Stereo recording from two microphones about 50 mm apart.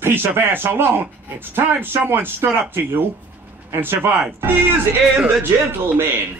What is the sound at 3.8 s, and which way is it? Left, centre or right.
A man's voice, right.